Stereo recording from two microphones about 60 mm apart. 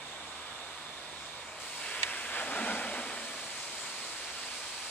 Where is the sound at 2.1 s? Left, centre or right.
Left.